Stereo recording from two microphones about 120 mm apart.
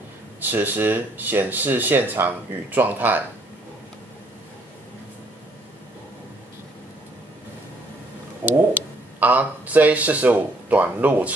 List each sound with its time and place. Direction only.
0.4 s speech: 15° right (ahead or behind)
8.5 s speech: 15° right (ahead or behind)